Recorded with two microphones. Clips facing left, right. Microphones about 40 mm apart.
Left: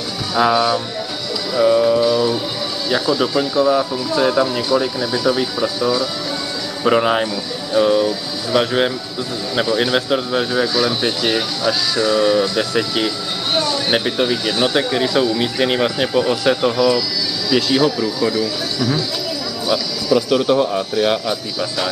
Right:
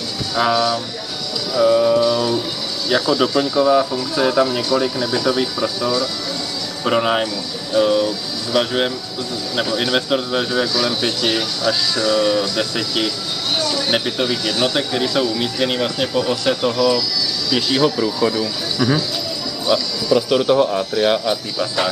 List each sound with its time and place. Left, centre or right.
0.3 s speech: centre
1.5 s speech: centre
6.8 s speech: centre
13.6 s a sound: centre
13.9 s speech: centre